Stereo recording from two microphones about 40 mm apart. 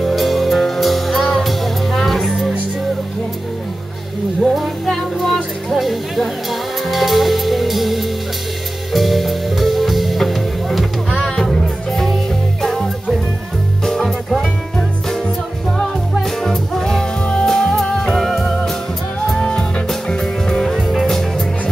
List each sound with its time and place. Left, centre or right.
0.0 s music: centre
4.4 s music: centre
5.7 s music: centre; by 17.5 s left
17.5 s music: centre
19.3 s music: centre
20.7 s music: centre